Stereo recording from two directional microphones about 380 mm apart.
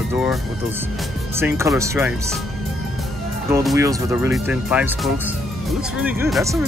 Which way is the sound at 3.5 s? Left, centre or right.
Centre.